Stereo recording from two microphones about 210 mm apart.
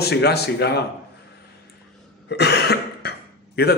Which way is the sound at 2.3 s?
50° left (ahead or behind).